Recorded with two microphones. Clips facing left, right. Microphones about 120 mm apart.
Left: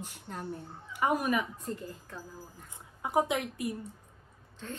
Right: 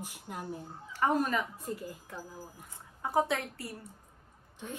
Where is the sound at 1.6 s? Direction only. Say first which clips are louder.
Even; 10° right (ahead or behind).